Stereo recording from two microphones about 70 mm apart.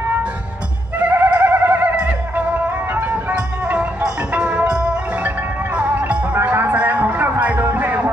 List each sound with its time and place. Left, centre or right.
0.9 s music: right